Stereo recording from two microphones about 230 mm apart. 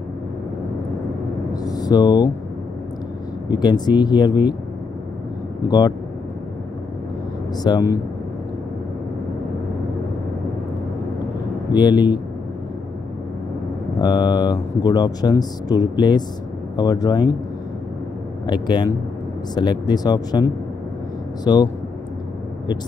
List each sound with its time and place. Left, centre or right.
1.5 s a sound: centre
3.5 s speech: centre
5.6 s speech: centre
7.7 s speech: centre
11.7 s speech: centre
14.0 s speech: centre
18.5 s speech: centre
21.5 s speech: centre